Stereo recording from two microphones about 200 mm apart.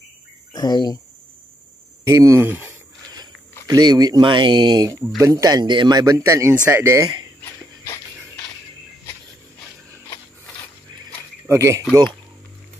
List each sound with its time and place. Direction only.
0.5 s speech: 20° left (ahead or behind)
2.0 s a sound: 15° right (ahead or behind)
3.6 s speech: 20° right (ahead or behind)
7.8 s music: 15° left (ahead or behind)
11.4 s speech: 15° right (ahead or behind)